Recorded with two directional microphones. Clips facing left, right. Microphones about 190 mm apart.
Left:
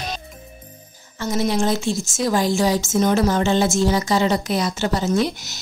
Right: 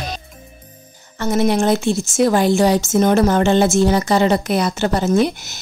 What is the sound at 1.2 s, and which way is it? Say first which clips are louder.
Speech: right 4 dB; 60° right (ahead or behind).